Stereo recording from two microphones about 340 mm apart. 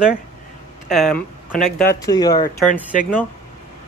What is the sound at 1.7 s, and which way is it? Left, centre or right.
Speech, centre.